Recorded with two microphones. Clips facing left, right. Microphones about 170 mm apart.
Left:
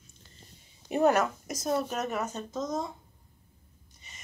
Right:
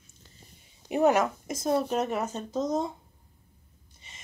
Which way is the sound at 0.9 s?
20° right (ahead or behind).